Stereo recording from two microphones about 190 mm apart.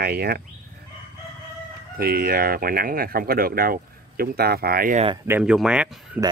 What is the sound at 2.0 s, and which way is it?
Speech, 55° right (ahead or behind).